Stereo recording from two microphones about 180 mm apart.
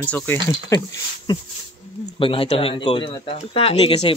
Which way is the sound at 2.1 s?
30° left (ahead or behind).